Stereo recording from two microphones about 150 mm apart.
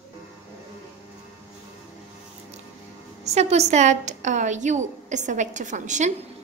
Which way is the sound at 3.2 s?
45° right (ahead or behind).